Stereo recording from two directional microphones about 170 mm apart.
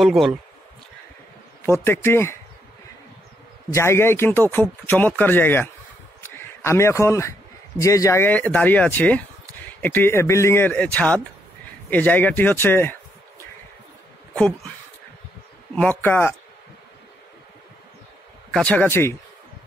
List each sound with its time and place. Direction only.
0.0 s speech: centre (ahead or behind)
1.7 s speech: 15° left (ahead or behind)
3.7 s a man's voice: 15° left (ahead or behind)
14.3 s speech: 5° left (ahead or behind)
15.7 s speech: 10° left (ahead or behind)
18.5 s speech: 5° left (ahead or behind)